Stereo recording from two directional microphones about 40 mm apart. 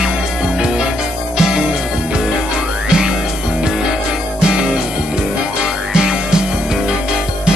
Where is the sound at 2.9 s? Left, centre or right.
Centre.